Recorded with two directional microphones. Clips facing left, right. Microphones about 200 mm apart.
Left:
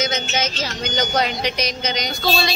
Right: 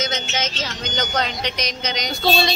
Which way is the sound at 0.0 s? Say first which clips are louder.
Left 2 dB; 10° left (ahead or behind).